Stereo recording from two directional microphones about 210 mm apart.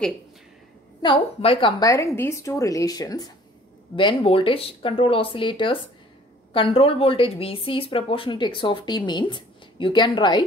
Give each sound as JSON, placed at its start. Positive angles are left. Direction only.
{"t": 1.0, "sound": "a woman's voice", "side_deg": 25}